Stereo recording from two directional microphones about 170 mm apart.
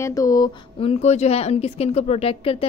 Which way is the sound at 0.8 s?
35° left (ahead or behind).